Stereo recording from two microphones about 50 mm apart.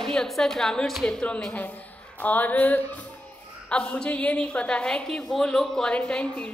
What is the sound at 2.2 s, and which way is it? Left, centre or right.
Speech, left.